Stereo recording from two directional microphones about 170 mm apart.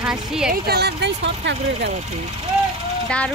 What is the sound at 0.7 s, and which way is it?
Speech, 75° right (ahead or behind).